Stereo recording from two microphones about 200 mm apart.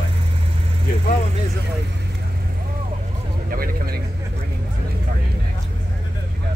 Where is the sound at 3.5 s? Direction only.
45° right (ahead or behind).